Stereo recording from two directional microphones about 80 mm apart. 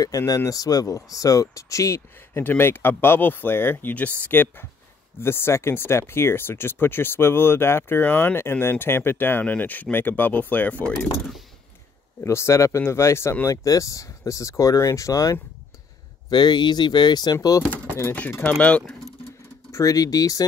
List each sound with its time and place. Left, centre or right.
0.5 s speech: left
2.4 s speech: left
12.2 s speech: left
16.3 s speech: left
18.4 s speech: centre
19.7 s speech: left